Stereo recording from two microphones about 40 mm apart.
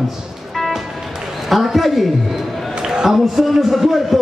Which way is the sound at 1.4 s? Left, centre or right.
Centre.